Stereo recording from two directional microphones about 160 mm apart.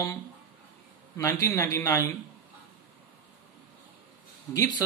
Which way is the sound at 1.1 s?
20° left (ahead or behind).